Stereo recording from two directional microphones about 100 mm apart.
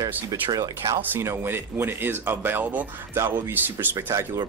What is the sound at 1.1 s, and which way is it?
Speech, 25° right (ahead or behind).